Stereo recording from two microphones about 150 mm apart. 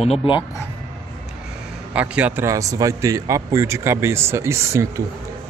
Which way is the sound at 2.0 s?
10° right (ahead or behind).